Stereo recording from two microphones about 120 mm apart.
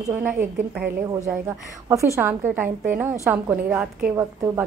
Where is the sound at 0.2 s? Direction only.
10° right (ahead or behind).